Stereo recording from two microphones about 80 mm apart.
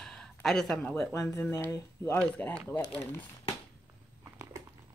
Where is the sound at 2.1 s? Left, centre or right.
Centre.